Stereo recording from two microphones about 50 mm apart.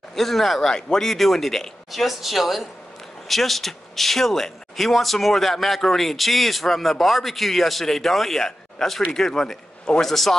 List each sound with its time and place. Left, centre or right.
0.1 s a man's voice: centre